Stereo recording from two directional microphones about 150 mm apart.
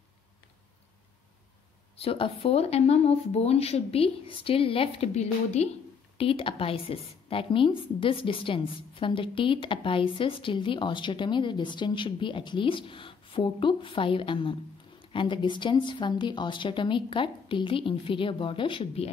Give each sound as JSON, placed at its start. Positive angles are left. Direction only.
{"t": 2.0, "sound": "speech", "side_deg": 40}
{"t": 6.1, "sound": "a woman's voice", "side_deg": 35}